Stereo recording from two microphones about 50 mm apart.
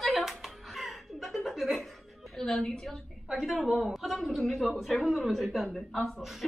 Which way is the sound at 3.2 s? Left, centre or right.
Centre.